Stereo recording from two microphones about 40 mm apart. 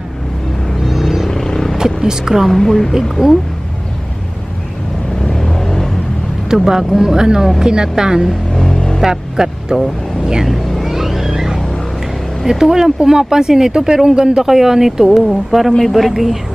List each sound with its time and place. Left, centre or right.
0.8 s music: centre
1.3 s vehicle: centre
1.8 s vehicle: centre
2.5 s speech: centre
3.0 s speech: centre
5.2 s vehicle: centre
6.5 s speech: centre
8.3 s vehicle: centre
9.0 s speech: centre
10.4 s vehicle: centre
12.4 s speech: centre